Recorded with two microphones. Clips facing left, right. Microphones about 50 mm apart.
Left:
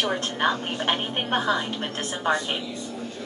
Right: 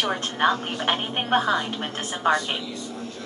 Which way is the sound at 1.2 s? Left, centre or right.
Right.